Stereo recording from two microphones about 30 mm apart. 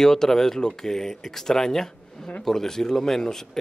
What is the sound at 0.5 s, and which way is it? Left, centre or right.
Speech, left.